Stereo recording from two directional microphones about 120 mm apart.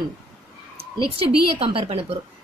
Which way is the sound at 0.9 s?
50° right (ahead or behind).